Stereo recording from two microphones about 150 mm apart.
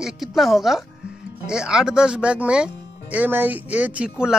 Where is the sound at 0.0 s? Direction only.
Centre (ahead or behind).